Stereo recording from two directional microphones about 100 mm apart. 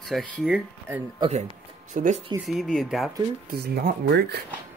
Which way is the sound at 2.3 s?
50° right (ahead or behind).